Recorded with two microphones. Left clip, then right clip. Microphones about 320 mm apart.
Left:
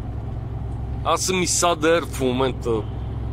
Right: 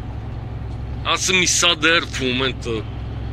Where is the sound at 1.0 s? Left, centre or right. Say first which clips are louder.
Right 4 dB; centre.